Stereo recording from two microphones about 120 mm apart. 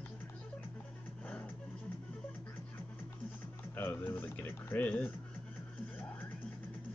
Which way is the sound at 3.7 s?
15° left (ahead or behind).